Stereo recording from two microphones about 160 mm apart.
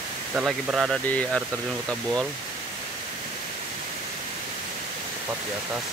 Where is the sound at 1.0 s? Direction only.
10° left (ahead or behind).